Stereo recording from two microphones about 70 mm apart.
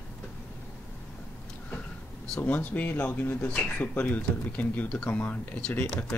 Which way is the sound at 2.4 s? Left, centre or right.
Left.